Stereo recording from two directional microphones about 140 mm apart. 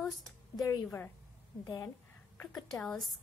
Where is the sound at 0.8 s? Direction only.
15° left (ahead or behind).